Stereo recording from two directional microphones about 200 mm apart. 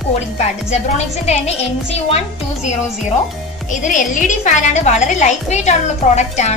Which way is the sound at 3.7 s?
40° left (ahead or behind).